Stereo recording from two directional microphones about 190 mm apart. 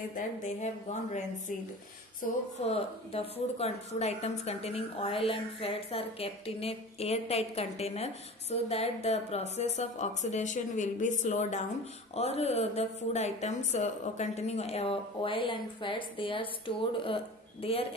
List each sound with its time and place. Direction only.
0.1 s a woman's voice: 40° left (ahead or behind)
2.2 s speech: 45° left (ahead or behind)
2.6 s a woman's voice: 30° left (ahead or behind)